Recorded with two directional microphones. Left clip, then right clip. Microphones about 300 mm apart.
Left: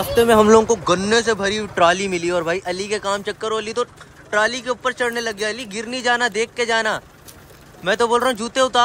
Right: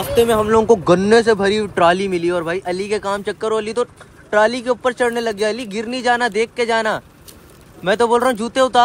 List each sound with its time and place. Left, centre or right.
0.5 s speech: centre